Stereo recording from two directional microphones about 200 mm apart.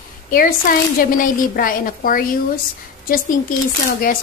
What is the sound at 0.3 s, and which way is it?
A woman's voice, 45° left (ahead or behind).